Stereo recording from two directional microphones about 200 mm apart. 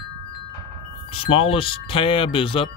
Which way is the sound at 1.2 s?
30° left (ahead or behind).